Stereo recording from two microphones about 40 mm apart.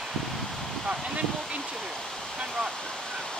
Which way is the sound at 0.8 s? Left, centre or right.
Right.